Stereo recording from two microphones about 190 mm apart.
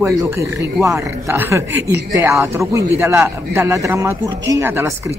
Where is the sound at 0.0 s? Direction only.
15° right (ahead or behind).